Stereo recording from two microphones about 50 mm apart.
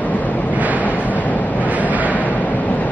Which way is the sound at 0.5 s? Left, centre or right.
Right.